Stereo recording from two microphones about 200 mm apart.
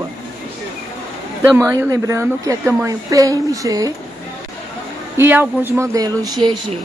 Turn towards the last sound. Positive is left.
turn(degrees=-20)  # may be behind; listen again after turning